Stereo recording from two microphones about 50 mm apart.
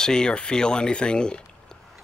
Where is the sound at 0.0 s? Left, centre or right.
Centre.